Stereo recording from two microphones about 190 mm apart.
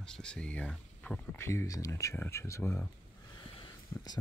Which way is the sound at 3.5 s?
25° left (ahead or behind).